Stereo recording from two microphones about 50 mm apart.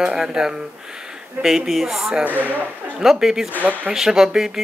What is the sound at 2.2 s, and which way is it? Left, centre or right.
Speech, right.